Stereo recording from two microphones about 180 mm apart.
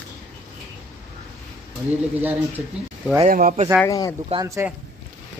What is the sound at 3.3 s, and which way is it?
Speech, 50° right (ahead or behind).